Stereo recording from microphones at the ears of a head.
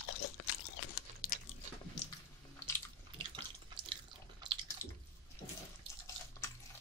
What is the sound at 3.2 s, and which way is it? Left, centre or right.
Drip, right.